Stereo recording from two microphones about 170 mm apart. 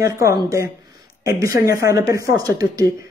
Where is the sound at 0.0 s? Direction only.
20° right (ahead or behind).